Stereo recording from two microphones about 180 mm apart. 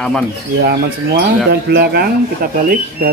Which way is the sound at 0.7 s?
65° right (ahead or behind).